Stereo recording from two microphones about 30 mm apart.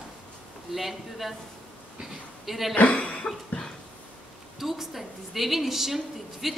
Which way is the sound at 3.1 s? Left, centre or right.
Left.